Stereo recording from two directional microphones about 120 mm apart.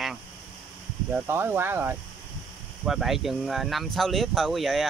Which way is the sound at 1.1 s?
20° right (ahead or behind).